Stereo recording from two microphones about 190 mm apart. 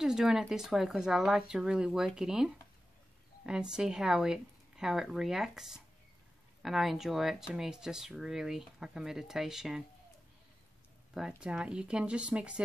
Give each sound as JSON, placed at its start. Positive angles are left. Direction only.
{"t": 0.0, "sound": "speech", "side_deg": -5}
{"t": 11.4, "sound": "speech", "side_deg": -5}